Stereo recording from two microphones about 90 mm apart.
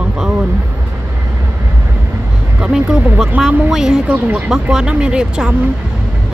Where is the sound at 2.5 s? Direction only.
5° right (ahead or behind).